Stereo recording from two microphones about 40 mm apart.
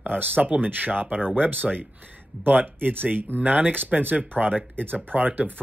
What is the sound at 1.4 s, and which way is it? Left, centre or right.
Speech, right.